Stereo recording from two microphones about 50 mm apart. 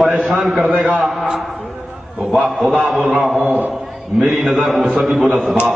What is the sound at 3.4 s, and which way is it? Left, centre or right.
Speech, right.